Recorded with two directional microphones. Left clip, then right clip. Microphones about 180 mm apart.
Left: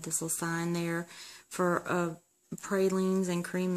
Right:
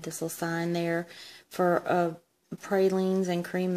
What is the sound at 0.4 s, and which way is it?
Speech, 20° left (ahead or behind).